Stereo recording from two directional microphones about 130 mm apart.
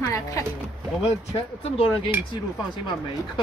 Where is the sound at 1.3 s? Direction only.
45° left (ahead or behind).